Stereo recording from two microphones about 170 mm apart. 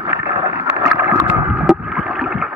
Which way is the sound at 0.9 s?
15° right (ahead or behind).